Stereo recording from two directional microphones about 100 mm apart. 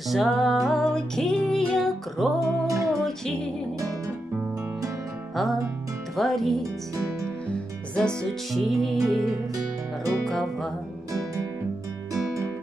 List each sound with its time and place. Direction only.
0.1 s music: centre (ahead or behind)
2.6 s music: 35° right (ahead or behind)
2.9 s music: 5° left (ahead or behind)
5.3 s music: centre (ahead or behind)